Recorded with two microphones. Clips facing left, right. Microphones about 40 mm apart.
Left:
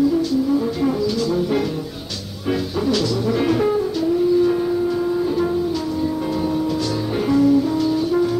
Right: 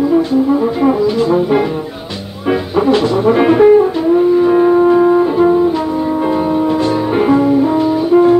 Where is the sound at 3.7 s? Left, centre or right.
Right.